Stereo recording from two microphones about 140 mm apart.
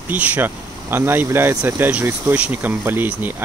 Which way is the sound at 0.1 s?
10° right (ahead or behind).